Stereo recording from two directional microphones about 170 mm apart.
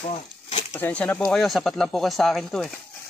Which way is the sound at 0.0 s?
35° left (ahead or behind).